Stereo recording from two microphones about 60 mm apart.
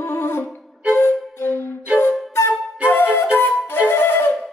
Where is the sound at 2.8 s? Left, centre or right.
Left.